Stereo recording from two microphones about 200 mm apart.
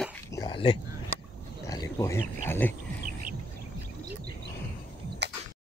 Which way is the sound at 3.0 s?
45° right (ahead or behind).